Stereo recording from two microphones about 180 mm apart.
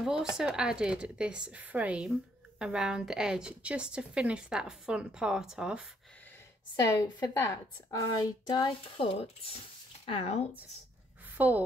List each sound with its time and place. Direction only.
0.0 s a woman's voice: 5° right (ahead or behind)
6.8 s a woman's voice: 20° left (ahead or behind)
11.3 s speech: 10° right (ahead or behind)